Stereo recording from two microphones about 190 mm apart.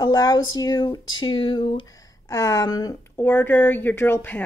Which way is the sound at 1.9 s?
15° left (ahead or behind).